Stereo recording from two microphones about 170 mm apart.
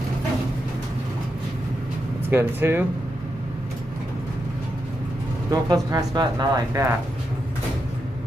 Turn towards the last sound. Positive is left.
turn(degrees=-20)  # may be behind; listen again after turning